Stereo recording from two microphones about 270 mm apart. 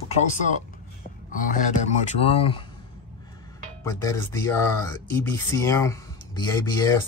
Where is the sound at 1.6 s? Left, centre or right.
Left.